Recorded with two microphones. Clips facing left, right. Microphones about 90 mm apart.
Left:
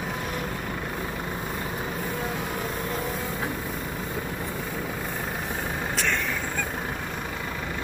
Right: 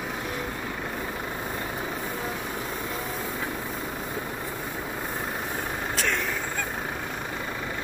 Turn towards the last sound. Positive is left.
turn(degrees=0)  # may be behind; listen again after turning